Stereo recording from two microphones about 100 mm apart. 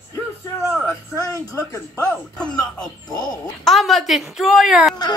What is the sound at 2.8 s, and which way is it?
A woman's voice, 5° left (ahead or behind).